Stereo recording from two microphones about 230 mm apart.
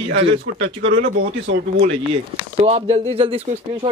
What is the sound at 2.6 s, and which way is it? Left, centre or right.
Speech, right.